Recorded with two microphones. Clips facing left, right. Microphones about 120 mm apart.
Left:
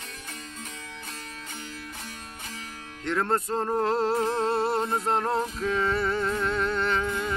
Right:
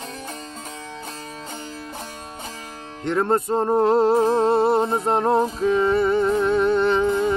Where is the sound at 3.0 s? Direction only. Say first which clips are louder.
Right 6 dB; 20° right (ahead or behind).